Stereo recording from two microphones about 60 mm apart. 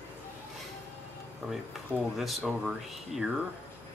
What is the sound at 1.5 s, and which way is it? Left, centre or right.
Speech, centre.